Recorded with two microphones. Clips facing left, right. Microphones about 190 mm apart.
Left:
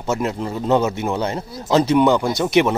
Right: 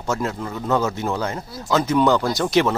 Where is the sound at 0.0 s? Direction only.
20° left (ahead or behind).